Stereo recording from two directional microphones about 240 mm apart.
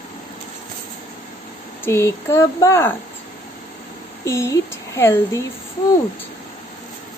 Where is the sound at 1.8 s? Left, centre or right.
Centre.